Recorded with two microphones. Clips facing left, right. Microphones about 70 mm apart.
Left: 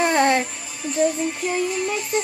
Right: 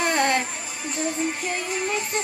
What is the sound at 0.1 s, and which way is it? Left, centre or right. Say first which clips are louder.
Music: left 4 dB; left.